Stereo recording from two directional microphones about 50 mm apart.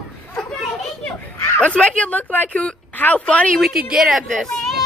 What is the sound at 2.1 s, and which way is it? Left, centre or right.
Speech, left.